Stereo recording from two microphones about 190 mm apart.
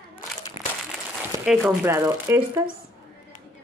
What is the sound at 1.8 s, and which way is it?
Speech, 15° right (ahead or behind).